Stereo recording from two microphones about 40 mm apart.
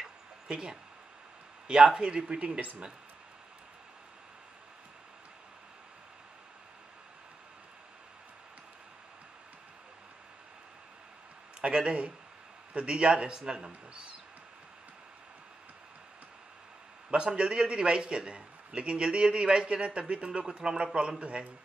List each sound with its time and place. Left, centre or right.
0.5 s a man's voice: right
2.0 s a man's voice: right
11.6 s a man's voice: right
17.1 s a man's voice: right